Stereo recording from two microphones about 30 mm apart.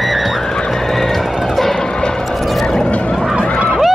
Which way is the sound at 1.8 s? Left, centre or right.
Left.